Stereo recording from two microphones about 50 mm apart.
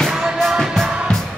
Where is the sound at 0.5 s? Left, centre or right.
Centre.